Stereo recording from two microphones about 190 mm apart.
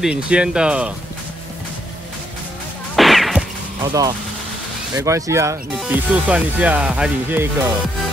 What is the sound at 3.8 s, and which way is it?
Speech, 20° right (ahead or behind).